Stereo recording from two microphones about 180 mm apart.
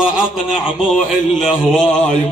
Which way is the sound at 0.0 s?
Centre (ahead or behind).